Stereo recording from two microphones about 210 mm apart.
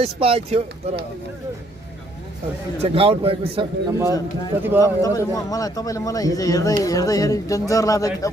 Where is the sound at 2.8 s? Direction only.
25° right (ahead or behind).